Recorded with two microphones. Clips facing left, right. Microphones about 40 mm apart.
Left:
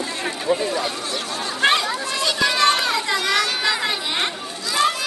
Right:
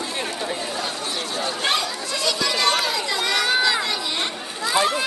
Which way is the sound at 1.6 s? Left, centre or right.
Left.